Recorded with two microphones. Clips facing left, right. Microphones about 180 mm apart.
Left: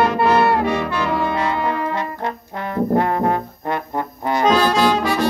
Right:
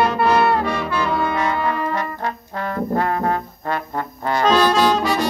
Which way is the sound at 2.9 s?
20° left (ahead or behind).